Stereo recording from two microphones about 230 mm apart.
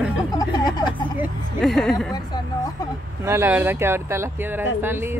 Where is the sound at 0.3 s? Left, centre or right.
Centre.